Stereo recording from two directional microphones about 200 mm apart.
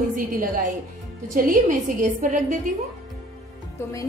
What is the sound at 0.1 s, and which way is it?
A woman's voice, 40° right (ahead or behind).